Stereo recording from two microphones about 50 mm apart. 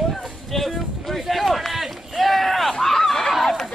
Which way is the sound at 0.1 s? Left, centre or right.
Centre.